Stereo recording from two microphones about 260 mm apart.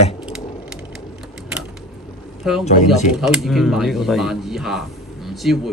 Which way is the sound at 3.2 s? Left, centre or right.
Centre.